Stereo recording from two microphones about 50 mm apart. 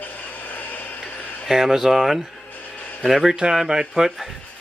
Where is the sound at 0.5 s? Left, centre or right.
Left.